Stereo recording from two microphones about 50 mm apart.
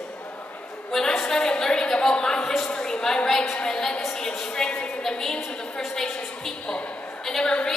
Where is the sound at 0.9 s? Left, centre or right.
Centre.